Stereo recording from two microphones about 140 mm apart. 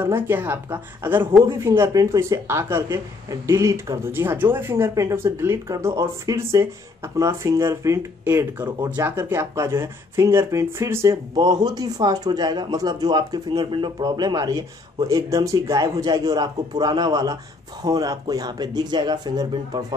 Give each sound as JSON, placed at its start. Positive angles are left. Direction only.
{"t": 0.0, "sound": "a woman's voice", "side_deg": -15}